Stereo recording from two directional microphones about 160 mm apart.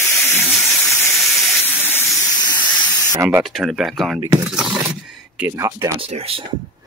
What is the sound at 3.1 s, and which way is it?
Speech, 15° right (ahead or behind).